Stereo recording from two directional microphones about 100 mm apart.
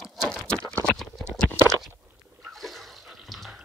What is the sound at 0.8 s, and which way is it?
Clip-clop, centre (ahead or behind).